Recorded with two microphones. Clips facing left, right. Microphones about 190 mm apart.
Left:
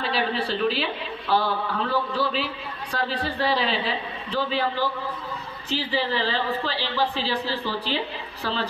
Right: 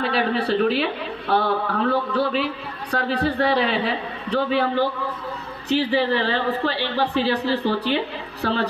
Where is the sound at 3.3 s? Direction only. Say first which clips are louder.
Right 1 dB; 60° right (ahead or behind).